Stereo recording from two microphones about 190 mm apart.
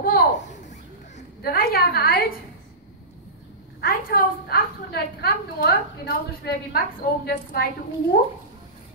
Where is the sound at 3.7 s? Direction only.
50° left (ahead or behind).